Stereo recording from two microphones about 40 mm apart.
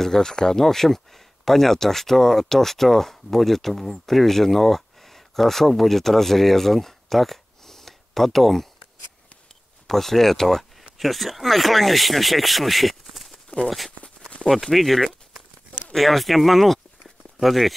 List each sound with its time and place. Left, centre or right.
0.0 s speech: centre
9.8 s speech: centre
14.0 s a sound: left
14.5 s speech: centre